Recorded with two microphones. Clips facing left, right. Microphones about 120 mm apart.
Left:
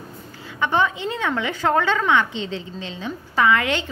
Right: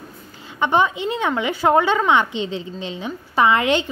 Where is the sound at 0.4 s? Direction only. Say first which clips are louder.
Right 3 dB; 20° right (ahead or behind).